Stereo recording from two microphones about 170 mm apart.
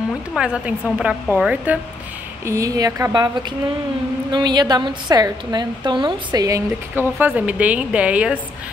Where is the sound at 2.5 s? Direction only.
20° right (ahead or behind).